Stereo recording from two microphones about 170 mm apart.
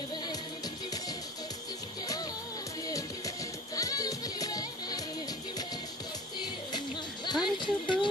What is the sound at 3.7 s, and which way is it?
Music, 20° left (ahead or behind).